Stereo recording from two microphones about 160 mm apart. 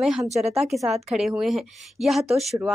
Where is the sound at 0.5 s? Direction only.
Centre (ahead or behind).